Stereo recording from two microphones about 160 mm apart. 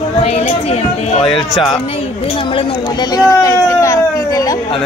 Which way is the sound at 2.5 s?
25° left (ahead or behind).